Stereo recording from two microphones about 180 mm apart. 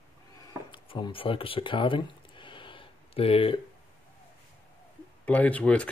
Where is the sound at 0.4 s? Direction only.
25° left (ahead or behind).